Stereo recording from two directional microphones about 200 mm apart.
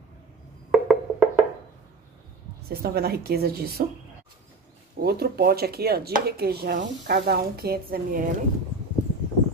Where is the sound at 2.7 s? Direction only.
50° right (ahead or behind).